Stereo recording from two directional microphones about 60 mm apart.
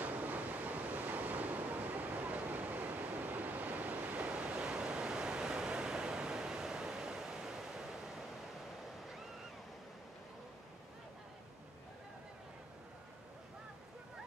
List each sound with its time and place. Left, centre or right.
0.0 s train: right; by 8.3 s centre